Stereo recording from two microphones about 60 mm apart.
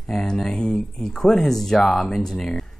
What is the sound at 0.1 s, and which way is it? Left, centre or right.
Speech, centre.